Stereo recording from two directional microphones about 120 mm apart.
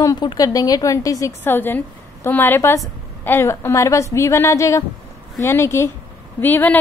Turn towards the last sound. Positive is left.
turn(degrees=15)  # may be behind; listen again after turning